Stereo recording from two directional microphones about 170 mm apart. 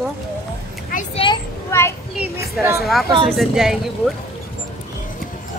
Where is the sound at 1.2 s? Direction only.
30° left (ahead or behind).